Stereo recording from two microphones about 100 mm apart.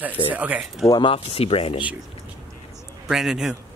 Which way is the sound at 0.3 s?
15° right (ahead or behind).